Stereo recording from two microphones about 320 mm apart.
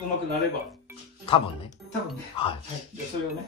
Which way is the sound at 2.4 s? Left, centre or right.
Centre.